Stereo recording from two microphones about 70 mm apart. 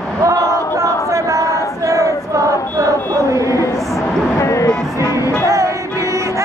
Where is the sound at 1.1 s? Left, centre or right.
Right.